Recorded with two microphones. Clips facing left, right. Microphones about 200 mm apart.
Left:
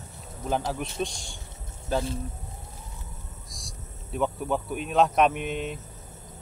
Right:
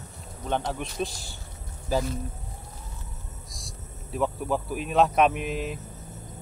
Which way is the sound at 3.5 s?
Centre (ahead or behind).